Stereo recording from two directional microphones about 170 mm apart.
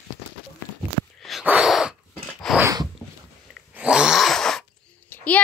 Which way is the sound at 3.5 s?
5° right (ahead or behind).